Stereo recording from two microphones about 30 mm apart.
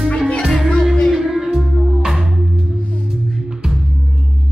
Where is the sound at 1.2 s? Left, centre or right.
Right.